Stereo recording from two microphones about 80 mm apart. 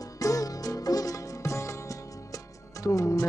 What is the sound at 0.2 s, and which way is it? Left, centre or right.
Music, left.